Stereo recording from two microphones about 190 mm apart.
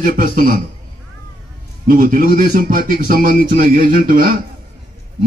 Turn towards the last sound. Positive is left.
turn(degrees=-50)  # may be behind; listen again after turning